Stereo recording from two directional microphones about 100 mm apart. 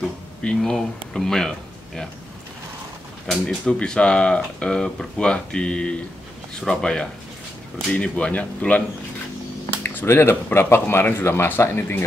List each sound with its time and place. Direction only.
0.4 s speech: 10° left (ahead or behind)
3.3 s speech: 5° left (ahead or behind)
9.8 s speech: 25° left (ahead or behind)